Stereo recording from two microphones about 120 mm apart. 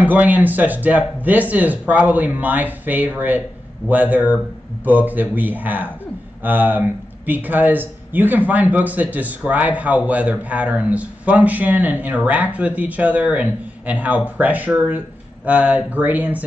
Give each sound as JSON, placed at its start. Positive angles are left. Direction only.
{"t": 0.0, "sound": "speech", "side_deg": -15}